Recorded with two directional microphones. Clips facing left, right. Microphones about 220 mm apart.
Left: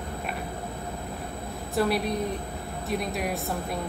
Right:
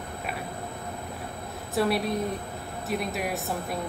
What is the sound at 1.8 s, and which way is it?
Speech, centre (ahead or behind).